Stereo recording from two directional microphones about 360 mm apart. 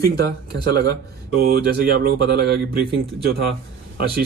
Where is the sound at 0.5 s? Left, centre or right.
Right.